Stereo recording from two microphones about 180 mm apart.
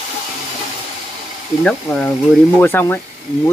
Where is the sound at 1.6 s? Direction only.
5° left (ahead or behind).